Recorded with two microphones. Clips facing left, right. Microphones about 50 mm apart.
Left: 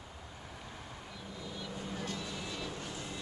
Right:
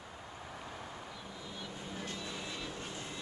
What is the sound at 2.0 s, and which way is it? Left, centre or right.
Vehicle, right.